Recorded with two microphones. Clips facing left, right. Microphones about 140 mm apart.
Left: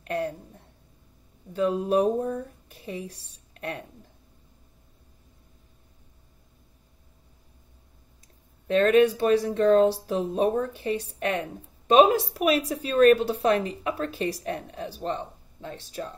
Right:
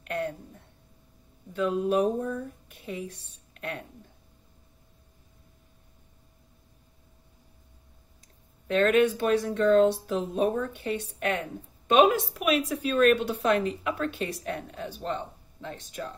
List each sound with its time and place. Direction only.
0.0 s a sound: 35° left (ahead or behind)
1.5 s speech: 35° left (ahead or behind)
8.6 s a woman's voice: 35° left (ahead or behind)